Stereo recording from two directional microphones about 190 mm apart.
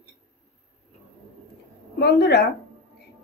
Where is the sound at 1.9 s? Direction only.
60° left (ahead or behind).